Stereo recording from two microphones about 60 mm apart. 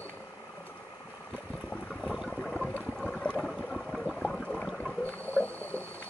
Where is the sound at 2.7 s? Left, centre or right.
Left.